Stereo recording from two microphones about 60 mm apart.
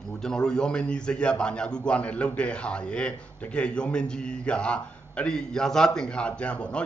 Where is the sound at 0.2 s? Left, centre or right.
Centre.